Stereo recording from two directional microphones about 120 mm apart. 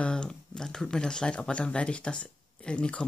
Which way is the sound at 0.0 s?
10° left (ahead or behind).